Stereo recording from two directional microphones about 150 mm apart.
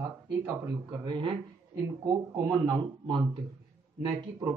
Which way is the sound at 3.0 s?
35° right (ahead or behind).